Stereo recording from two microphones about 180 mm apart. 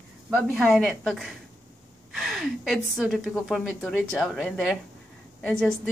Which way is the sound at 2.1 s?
Centre (ahead or behind).